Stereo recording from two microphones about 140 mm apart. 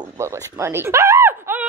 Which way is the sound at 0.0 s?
20° right (ahead or behind).